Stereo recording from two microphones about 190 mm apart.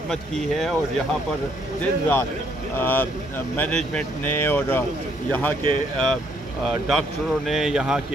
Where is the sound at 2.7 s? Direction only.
10° left (ahead or behind).